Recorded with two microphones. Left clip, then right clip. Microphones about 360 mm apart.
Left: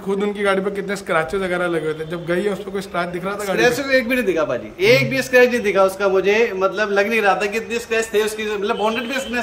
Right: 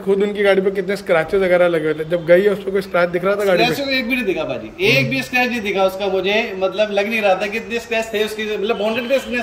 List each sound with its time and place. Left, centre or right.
0.2 s a man's voice: centre